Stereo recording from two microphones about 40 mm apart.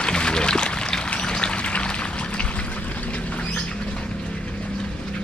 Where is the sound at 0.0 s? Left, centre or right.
Left.